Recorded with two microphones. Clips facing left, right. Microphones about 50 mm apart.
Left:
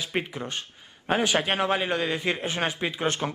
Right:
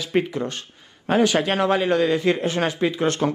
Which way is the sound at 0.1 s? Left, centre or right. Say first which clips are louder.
Right 10 dB; centre.